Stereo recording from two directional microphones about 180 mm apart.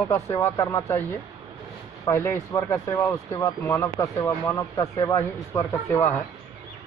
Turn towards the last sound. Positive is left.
turn(degrees=15)  # may be behind; listen again after turning